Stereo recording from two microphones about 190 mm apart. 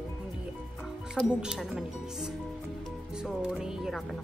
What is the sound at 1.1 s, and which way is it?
Speech, 5° right (ahead or behind).